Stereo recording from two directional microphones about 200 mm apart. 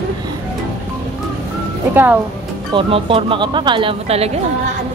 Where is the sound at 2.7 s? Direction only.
25° right (ahead or behind).